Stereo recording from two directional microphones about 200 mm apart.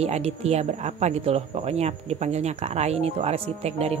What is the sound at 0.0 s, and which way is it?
A woman's voice, 30° right (ahead or behind).